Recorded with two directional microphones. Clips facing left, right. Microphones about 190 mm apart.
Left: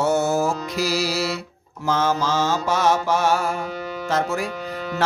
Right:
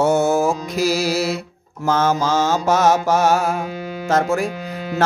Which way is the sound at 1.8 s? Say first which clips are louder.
Right 3 dB; 45° right (ahead or behind).